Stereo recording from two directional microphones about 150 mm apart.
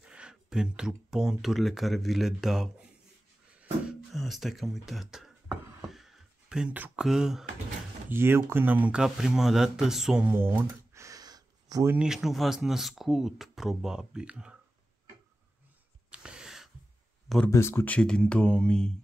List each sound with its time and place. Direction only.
0.0 s speech: 5° right (ahead or behind)
4.1 s a sound: centre (ahead or behind)
8.1 s speech: 15° right (ahead or behind)
11.9 s speech: 5° right (ahead or behind)
16.1 s a sound: 5° right (ahead or behind)
17.5 s speech: 15° left (ahead or behind)